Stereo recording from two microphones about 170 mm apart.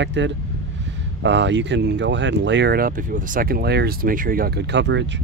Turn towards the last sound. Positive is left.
turn(degrees=-90)